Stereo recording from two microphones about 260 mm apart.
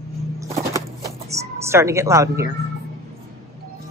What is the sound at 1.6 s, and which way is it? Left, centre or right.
Speech, centre.